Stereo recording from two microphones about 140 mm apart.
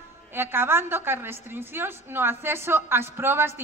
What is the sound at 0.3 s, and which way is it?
A woman's voice, 15° right (ahead or behind).